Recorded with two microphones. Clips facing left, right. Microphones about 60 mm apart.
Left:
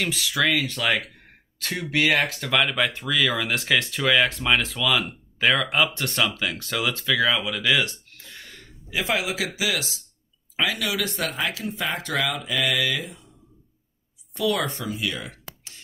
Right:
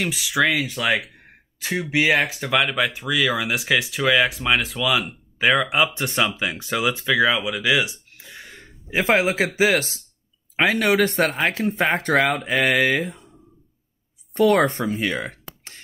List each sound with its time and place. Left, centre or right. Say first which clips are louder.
0.0 s speech: right 3 dB; centre
8.9 s a man's voice: right 6 dB; right
14.3 s speech: right 8 dB; right